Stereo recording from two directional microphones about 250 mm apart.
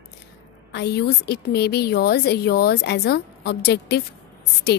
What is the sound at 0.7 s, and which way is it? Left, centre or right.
A woman's voice, left.